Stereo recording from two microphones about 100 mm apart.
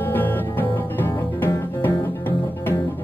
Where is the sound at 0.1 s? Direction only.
20° left (ahead or behind).